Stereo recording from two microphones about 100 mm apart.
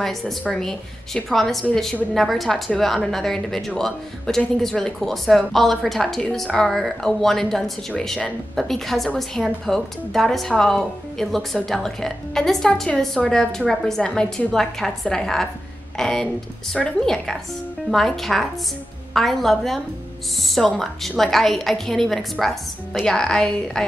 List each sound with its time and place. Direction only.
0.0 s speech: centre (ahead or behind)